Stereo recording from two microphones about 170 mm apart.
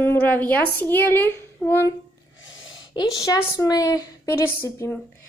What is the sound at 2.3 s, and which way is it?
Gasp, 90° left.